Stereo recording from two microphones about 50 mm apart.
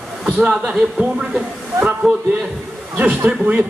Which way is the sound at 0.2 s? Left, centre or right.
Centre.